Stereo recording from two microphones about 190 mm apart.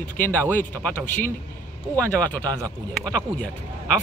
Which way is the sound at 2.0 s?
10° left (ahead or behind).